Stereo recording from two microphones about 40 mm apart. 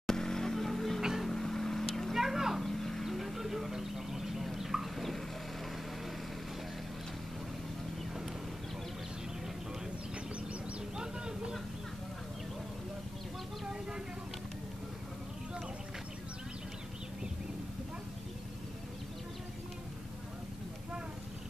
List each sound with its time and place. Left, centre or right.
0.0 s vehicle: centre
1.2 s music: centre
2.1 s a sound: centre
2.6 s vehicle: centre
4.9 s chicken: centre
11.0 s a sound: centre